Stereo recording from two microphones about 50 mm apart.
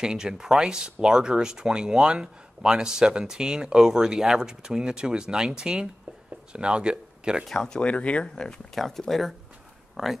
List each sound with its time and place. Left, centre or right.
0.0 s speech: centre
7.4 s speech: centre
7.8 s speech: left
8.7 s speech: centre